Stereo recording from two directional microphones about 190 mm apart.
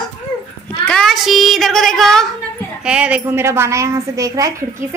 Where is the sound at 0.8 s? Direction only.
5° left (ahead or behind).